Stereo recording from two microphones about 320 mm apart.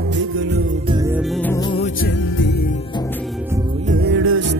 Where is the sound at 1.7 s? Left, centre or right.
Left.